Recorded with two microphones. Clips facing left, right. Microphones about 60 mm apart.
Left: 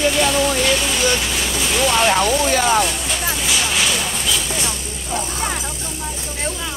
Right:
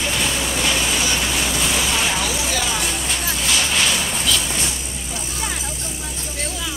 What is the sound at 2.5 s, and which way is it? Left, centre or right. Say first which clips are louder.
Vehicle: left 8 dB; left.